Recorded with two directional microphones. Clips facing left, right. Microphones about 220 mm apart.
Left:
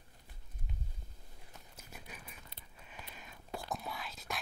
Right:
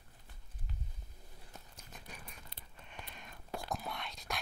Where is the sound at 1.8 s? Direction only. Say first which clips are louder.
Left 3 dB; 5° left (ahead or behind).